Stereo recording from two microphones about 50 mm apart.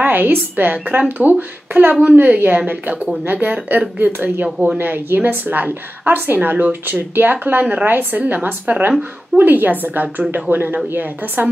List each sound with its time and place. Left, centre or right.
0.0 s a sound: right
0.6 s speech: right
4.5 s speech: centre
4.7 s speech: right